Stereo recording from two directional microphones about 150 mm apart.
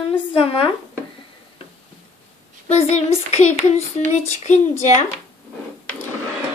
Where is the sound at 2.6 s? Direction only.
45° left (ahead or behind).